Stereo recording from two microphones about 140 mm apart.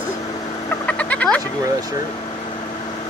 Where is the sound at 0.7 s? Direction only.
10° left (ahead or behind).